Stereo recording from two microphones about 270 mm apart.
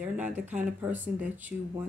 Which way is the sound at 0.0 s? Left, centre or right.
Centre.